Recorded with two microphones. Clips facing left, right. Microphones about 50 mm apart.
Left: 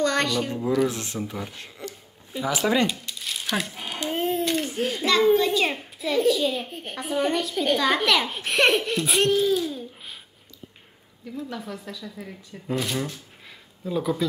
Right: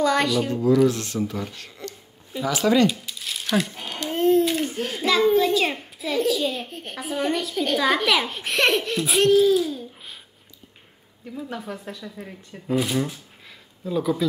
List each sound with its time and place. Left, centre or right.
0.0 s speech: centre
0.8 s speech: left
2.9 s a sound: centre
4.5 s a child's voice: centre
11.5 s speech: right
12.6 s speech: centre